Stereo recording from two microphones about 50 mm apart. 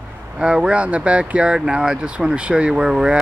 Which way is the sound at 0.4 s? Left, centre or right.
Centre.